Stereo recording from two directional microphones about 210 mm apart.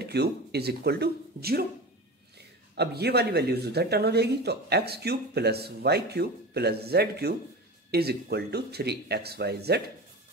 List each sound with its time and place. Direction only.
0.0 s speech: 50° right (ahead or behind)
2.7 s speech: 50° right (ahead or behind)